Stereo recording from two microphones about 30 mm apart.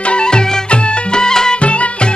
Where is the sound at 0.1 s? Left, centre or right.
Left.